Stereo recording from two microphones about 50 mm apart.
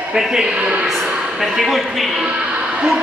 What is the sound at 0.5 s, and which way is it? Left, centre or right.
Speech, right.